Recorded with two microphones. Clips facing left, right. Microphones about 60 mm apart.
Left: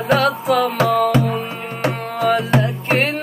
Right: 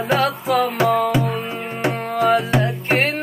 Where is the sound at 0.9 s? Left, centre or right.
Centre.